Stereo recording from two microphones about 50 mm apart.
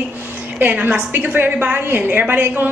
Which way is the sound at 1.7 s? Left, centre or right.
Right.